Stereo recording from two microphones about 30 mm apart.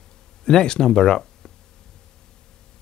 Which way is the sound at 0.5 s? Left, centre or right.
Left.